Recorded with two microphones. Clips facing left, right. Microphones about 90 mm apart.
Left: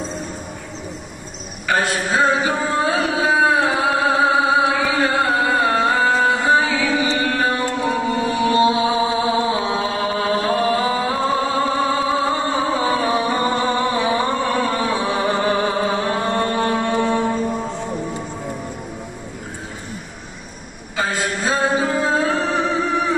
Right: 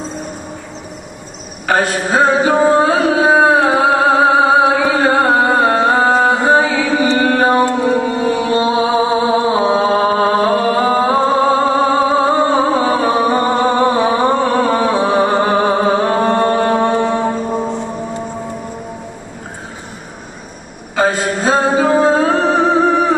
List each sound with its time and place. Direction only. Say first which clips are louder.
1.7 s a sound: right 5 dB; 45° right (ahead or behind)
4.6 s music: right 6 dB; 40° right (ahead or behind)
9.5 s chant: right 8 dB; 35° right (ahead or behind)
20.9 s music: right 7 dB; 50° right (ahead or behind)